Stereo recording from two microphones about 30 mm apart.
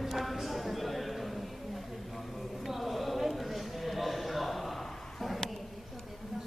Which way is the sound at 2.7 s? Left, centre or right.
Centre.